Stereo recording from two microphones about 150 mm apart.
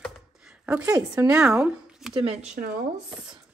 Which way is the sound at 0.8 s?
20° right (ahead or behind).